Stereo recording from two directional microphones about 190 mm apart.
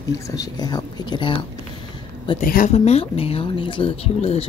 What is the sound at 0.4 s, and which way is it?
Speech, 20° left (ahead or behind).